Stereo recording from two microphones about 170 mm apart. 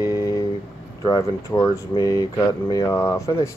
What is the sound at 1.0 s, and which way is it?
Speech, 20° left (ahead or behind).